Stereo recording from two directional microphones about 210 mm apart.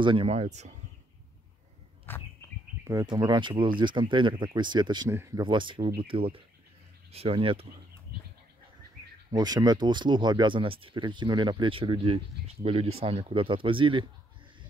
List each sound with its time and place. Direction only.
0.0 s speech: 25° right (ahead or behind)
2.1 s bird: 10° left (ahead or behind)
2.8 s speech: 15° right (ahead or behind)
9.3 s speech: 20° right (ahead or behind)